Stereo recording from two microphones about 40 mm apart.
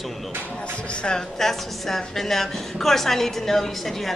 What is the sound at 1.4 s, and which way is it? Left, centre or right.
A woman's voice, centre.